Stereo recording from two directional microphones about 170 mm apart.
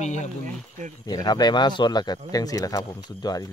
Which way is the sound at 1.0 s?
25° left (ahead or behind).